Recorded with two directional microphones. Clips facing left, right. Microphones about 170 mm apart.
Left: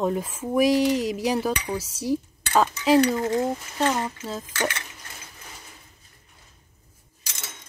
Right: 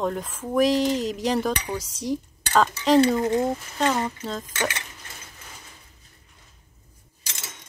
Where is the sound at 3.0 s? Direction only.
20° right (ahead or behind).